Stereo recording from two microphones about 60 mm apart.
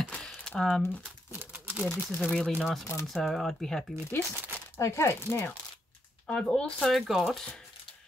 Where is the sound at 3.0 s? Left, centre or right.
Centre.